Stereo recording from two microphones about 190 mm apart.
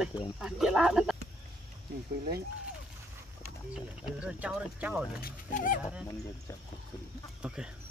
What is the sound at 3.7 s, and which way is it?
Speech, 5° right (ahead or behind).